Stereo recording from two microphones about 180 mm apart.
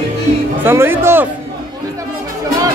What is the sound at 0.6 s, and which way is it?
Speech, 15° right (ahead or behind).